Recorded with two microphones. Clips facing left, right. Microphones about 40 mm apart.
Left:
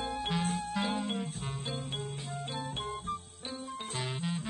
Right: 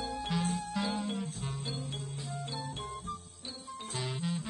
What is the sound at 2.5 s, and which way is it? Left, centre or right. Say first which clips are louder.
Organ: left 3 dB; left.